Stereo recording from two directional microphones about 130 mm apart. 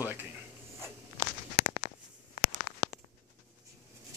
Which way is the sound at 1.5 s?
50° left (ahead or behind).